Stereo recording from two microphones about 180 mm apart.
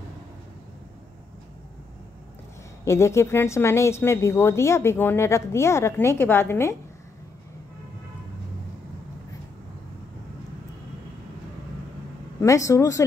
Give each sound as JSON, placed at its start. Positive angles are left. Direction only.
{"t": 2.8, "sound": "a woman's voice", "side_deg": 15}
{"t": 12.4, "sound": "a woman's voice", "side_deg": 15}